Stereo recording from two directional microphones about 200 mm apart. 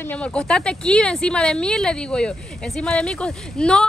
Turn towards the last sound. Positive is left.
turn(degrees=5)  # may be behind; listen again after turning